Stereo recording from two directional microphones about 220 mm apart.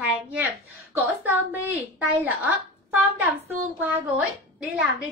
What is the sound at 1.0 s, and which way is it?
A woman's voice, 10° right (ahead or behind).